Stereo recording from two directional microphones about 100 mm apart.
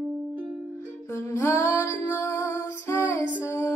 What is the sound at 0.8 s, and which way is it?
Music, 25° left (ahead or behind).